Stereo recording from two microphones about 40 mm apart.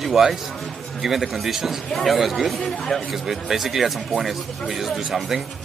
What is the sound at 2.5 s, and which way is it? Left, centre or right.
Speech, centre.